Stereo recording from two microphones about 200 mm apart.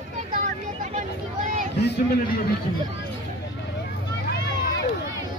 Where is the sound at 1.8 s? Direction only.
55° left (ahead or behind).